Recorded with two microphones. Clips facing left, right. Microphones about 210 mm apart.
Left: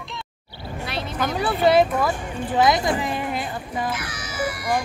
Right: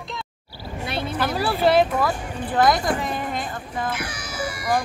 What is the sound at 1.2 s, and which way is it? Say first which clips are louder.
Speech: left 1 dB; 5° right (ahead or behind).